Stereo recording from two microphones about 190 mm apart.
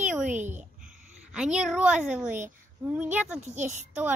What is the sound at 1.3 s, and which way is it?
A woman's voice, 5° right (ahead or behind).